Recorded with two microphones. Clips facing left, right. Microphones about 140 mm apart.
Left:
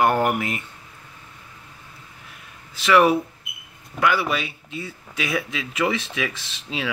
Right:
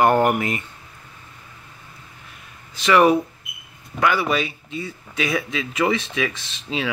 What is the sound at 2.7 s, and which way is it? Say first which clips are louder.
Speech: right 1 dB; 5° left (ahead or behind).